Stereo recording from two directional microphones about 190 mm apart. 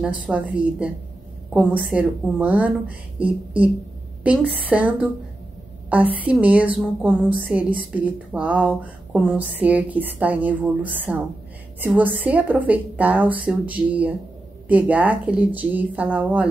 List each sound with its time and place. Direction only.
0.2 s a woman's voice: 5° right (ahead or behind)